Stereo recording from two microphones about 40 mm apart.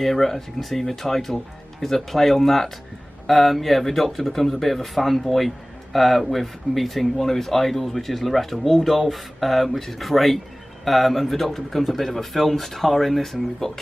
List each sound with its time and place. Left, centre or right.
0.0 s speech: centre